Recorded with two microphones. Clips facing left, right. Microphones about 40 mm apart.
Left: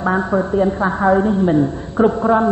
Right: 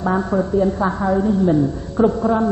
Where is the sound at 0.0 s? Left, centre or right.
Left.